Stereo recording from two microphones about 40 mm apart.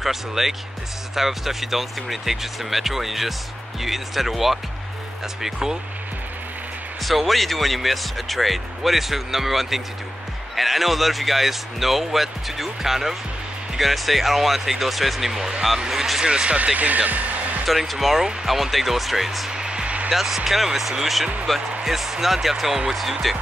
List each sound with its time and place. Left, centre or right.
0.0 s speech: centre
7.0 s speech: centre
15.9 s a sound: centre
16.3 s speech: right
17.6 s speech: centre
19.5 s music: right
20.1 s speech: centre